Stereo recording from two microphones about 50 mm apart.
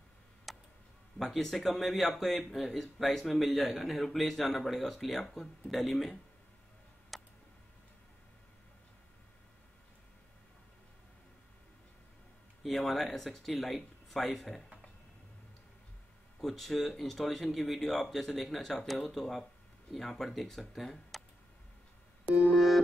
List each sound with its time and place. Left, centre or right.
0.5 s tick: centre
1.1 s speech: centre
7.1 s a sound: centre
12.6 s speech: centre
16.3 s speech: centre
22.2 s busy signal: right